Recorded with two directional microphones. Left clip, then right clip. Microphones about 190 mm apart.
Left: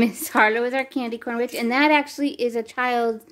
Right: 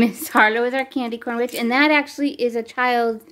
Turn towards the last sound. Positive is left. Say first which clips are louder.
# right 3 dB
turn(degrees=0)  # may be behind; listen again after turning